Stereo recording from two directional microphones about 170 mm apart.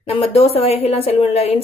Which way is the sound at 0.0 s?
35° left (ahead or behind).